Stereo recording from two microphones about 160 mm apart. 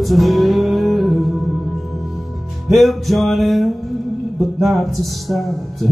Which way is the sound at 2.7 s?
Centre (ahead or behind).